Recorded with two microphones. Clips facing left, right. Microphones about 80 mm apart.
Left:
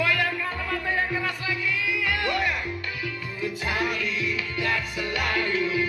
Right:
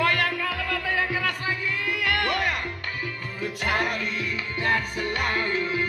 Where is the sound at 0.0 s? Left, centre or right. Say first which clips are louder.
Right 1 dB; right.